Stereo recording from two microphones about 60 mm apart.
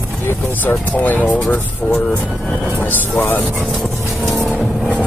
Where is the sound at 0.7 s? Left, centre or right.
Left.